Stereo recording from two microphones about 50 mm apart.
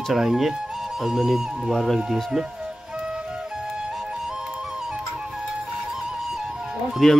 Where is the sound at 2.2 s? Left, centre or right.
Centre.